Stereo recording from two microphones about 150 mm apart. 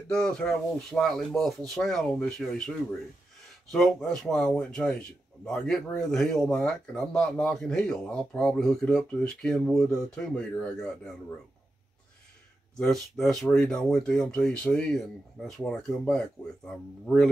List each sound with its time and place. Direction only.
0.1 s speech: 5° left (ahead or behind)
3.7 s speech: 5° left (ahead or behind)
12.7 s speech: 5° left (ahead or behind)